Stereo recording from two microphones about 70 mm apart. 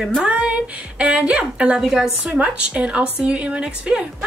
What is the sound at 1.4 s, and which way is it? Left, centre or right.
A woman's voice, centre.